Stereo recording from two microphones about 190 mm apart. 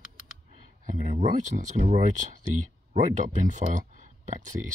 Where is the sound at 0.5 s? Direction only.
35° right (ahead or behind).